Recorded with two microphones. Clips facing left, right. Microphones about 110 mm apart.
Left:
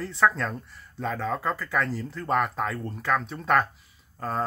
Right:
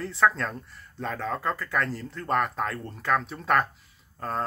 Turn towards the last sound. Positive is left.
turn(degrees=0)  # may be behind; listen again after turning